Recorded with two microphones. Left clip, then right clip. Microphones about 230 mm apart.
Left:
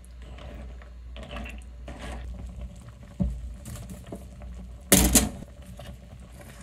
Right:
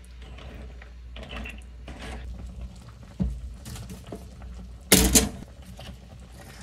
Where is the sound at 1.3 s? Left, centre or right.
Centre.